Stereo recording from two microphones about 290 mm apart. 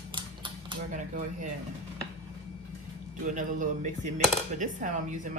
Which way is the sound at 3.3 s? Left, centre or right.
Right.